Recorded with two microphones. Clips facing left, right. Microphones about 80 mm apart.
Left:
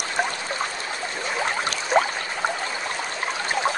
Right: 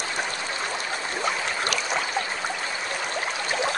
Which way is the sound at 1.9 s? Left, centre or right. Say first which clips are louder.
Left 9 dB; left.